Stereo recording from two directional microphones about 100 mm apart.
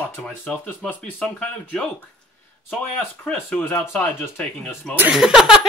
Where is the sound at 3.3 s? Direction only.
15° left (ahead or behind).